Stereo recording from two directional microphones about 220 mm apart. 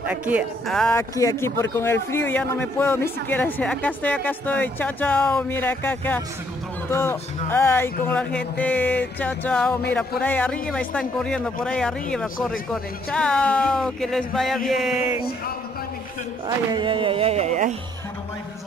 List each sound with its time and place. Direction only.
0.0 s speech: 5° right (ahead or behind)
16.4 s speech: 20° right (ahead or behind)